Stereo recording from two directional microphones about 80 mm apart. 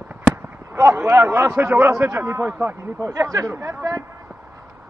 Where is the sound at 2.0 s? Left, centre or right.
Right.